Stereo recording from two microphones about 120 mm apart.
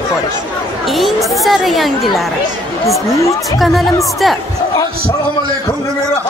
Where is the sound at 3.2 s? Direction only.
25° left (ahead or behind).